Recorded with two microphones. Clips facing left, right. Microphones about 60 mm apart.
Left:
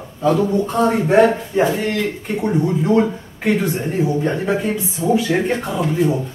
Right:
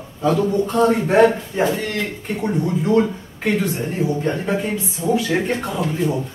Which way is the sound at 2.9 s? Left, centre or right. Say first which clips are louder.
Left 1 dB; centre.